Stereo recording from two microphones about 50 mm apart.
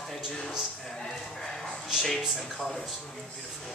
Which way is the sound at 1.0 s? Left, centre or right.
Centre.